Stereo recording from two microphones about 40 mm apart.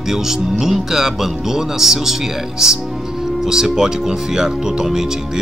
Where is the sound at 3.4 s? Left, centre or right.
Centre.